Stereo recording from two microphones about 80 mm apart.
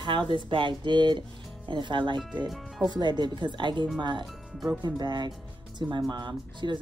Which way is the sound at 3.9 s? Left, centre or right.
Right.